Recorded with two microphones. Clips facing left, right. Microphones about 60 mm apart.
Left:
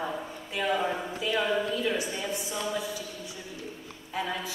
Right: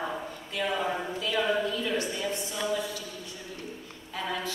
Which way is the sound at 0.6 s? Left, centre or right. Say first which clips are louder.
Left 2 dB; centre.